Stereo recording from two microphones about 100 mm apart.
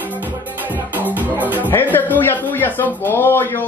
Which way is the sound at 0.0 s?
15° right (ahead or behind).